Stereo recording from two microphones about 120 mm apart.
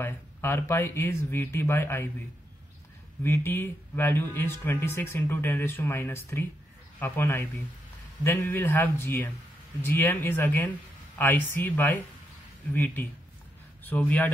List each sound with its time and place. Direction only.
0.0 s speech: 20° left (ahead or behind)
3.3 s speech: 20° left (ahead or behind)